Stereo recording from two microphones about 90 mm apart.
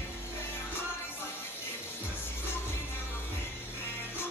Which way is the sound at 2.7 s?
25° left (ahead or behind).